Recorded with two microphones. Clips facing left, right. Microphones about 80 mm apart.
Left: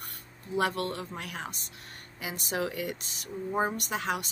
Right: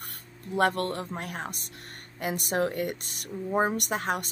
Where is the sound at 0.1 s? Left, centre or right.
Right.